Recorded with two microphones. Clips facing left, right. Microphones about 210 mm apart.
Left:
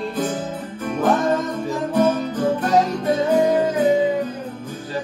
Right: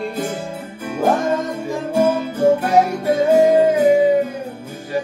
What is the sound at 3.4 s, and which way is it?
Music, 25° right (ahead or behind).